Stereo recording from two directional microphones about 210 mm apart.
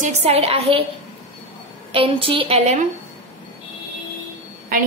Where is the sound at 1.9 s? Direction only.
25° right (ahead or behind).